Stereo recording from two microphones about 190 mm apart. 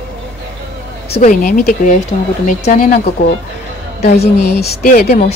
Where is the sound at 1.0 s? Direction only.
35° left (ahead or behind).